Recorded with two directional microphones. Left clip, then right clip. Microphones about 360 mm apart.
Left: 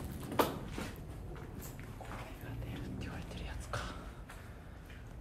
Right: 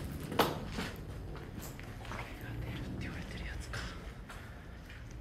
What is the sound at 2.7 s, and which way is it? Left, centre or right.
Whispering, centre.